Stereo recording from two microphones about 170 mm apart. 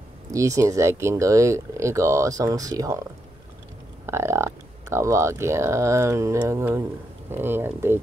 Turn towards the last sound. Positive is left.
turn(degrees=-15)  # may be behind; listen again after turning